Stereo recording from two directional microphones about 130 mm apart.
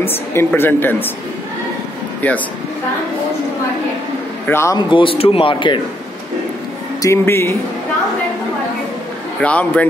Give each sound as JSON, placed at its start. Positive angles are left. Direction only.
{"t": 0.0, "sound": "speech", "side_deg": 15}
{"t": 2.2, "sound": "speech", "side_deg": 10}
{"t": 4.5, "sound": "a man's voice", "side_deg": 20}
{"t": 4.9, "sound": "speech", "side_deg": 45}
{"t": 7.0, "sound": "a man's voice", "side_deg": 20}
{"t": 9.4, "sound": "speech", "side_deg": 10}